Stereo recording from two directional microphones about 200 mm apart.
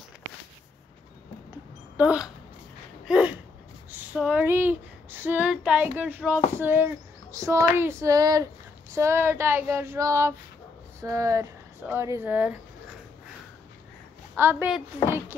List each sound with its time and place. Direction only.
2.0 s speech: 5° right (ahead or behind)
3.1 s a sound: 5° right (ahead or behind)
3.9 s female singing: 5° right (ahead or behind)
6.5 s child singing: 10° right (ahead or behind)
14.3 s child singing: 10° right (ahead or behind)